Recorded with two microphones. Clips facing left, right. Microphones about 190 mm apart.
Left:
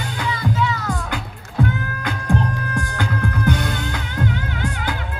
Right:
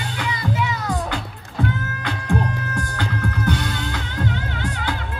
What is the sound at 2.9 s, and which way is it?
Music, 50° left (ahead or behind).